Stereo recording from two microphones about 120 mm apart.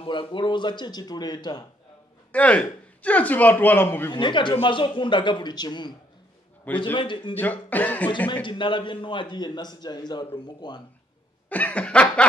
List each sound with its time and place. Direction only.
0.0 s a man's voice: 45° left (ahead or behind)
2.3 s speech: 10° left (ahead or behind)
4.1 s a man's voice: 40° left (ahead or behind)
6.7 s speech: 15° left (ahead or behind)
7.0 s speech: 45° left (ahead or behind)
7.3 s speech: 15° left (ahead or behind)
8.5 s a man's voice: 45° left (ahead or behind)
11.4 s speech: 15° left (ahead or behind)